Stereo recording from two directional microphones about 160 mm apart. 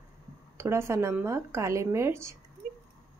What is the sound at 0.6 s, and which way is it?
Speech, 15° right (ahead or behind).